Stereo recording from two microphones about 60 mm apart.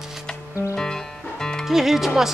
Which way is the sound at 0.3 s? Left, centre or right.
Centre.